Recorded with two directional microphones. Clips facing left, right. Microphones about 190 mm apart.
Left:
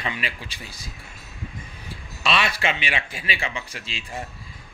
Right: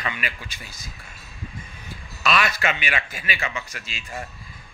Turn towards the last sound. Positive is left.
turn(degrees=30)  # may be behind; listen again after turning